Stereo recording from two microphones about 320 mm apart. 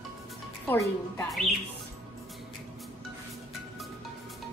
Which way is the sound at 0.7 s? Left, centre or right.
Centre.